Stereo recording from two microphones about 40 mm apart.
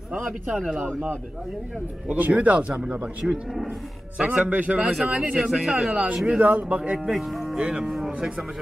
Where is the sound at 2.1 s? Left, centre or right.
Right.